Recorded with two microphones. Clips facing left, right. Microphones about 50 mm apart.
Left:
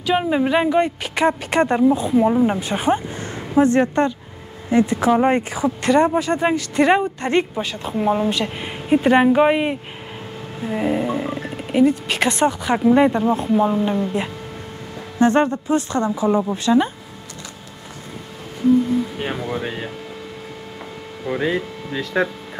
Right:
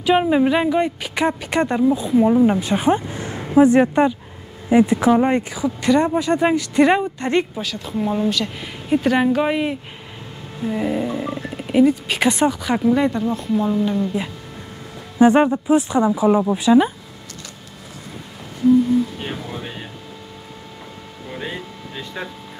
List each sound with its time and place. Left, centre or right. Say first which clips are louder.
0.0 s speech: right 3 dB; centre
1.7 s speech: even; centre
5.1 s speech: even; centre
7.2 s speech: even; centre
7.6 s speech: left 3 dB; left
11.1 s speech: left 2 dB; left
11.5 s speech: right 1 dB; centre
12.5 s speech: left 1 dB; centre
12.8 s speech: left 4 dB; left
13.2 s speech: left 3 dB; left
15.1 s speech: right 3 dB; centre
19.1 s speech: left 4 dB; left
21.3 s speech: left 9 dB; left